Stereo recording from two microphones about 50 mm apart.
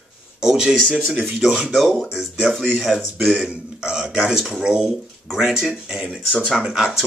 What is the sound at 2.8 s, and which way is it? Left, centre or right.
Speech, centre.